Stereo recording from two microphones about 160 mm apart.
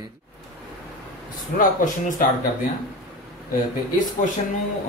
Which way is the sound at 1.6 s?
55° left (ahead or behind).